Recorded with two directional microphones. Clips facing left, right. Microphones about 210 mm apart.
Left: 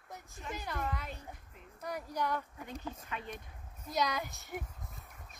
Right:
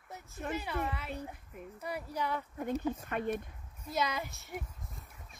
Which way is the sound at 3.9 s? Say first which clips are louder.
Even; centre (ahead or behind).